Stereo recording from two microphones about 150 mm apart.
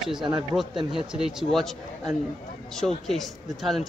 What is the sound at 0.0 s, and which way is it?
A man's voice, 5° right (ahead or behind).